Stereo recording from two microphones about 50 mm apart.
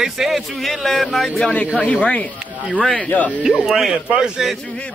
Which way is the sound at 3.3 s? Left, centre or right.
Right.